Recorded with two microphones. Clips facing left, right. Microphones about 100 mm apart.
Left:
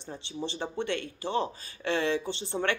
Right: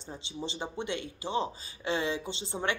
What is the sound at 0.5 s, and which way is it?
Speech, 15° right (ahead or behind).